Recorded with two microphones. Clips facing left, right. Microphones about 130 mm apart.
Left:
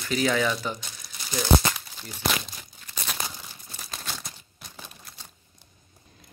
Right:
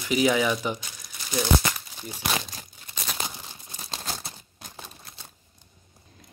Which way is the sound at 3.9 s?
30° right (ahead or behind).